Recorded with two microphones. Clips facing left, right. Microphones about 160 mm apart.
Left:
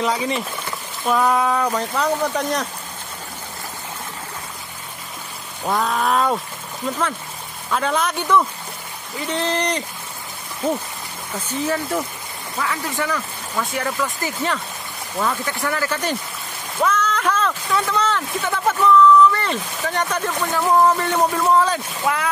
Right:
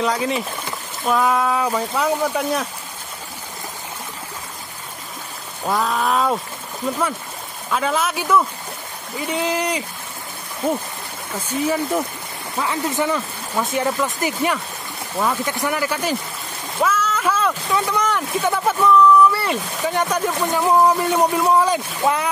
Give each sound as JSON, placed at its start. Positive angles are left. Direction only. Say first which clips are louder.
{"t": 0.0, "sound": "speech", "louder": "right 1 dB", "side_deg": 0}
{"t": 5.7, "sound": "speech", "louder": "even", "side_deg": 0}
{"t": 7.7, "sound": "speech", "louder": "even", "side_deg": -5}
{"t": 11.3, "sound": "speech", "louder": "right 2 dB", "side_deg": -10}
{"t": 12.5, "sound": "speech", "louder": "right 3 dB", "side_deg": -20}